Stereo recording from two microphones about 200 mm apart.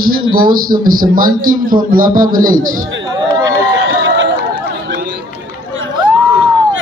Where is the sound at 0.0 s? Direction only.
45° right (ahead or behind).